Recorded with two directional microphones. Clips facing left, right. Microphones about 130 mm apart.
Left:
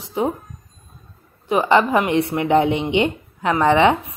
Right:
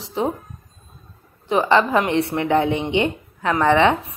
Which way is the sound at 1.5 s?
15° left (ahead or behind).